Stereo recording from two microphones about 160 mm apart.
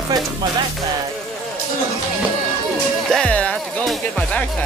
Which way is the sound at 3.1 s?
5° left (ahead or behind).